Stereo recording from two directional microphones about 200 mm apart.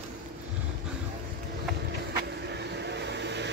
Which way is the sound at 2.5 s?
60° right (ahead or behind).